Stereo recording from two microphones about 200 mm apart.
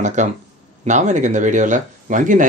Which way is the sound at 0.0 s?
35° right (ahead or behind).